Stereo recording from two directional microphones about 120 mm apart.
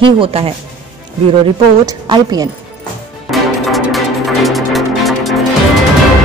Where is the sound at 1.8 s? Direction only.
30° right (ahead or behind).